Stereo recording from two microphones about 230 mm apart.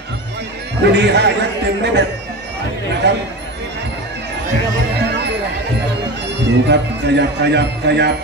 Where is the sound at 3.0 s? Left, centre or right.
Right.